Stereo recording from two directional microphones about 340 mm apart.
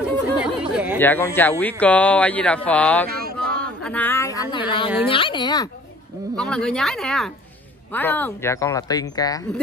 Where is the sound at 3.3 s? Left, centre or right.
Centre.